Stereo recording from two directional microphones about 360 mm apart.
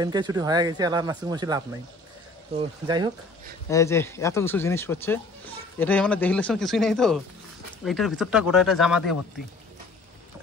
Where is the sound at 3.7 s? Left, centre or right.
Centre.